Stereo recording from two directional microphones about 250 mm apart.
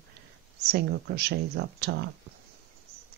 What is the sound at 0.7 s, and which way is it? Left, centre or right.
Speech, right.